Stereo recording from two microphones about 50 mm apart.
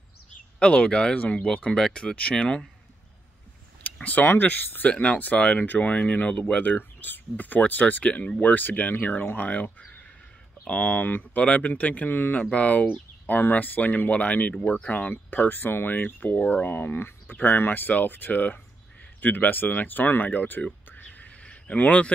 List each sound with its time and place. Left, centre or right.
0.6 s speech: left
1.2 s speech: left
1.8 s speech: centre
4.0 s speech: left
8.4 s speech: left
9.5 s speech: left
12.1 s speech: left
12.4 s speech: left
20.9 s a sound: left